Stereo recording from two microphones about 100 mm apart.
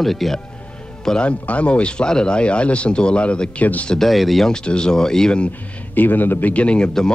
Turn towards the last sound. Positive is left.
turn(degrees=10)  # may be behind; listen again after turning